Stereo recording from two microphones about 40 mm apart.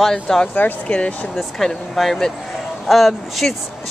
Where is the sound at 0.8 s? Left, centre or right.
Left.